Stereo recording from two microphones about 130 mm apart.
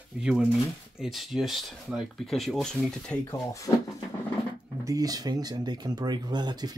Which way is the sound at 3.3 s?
25° left (ahead or behind).